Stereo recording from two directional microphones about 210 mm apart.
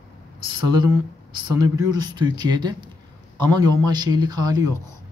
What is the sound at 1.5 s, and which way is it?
Speech, 15° right (ahead or behind).